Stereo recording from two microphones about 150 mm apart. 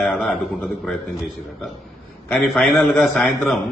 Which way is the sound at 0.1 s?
Centre (ahead or behind).